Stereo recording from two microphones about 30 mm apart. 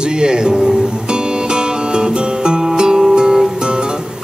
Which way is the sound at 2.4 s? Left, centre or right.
Right.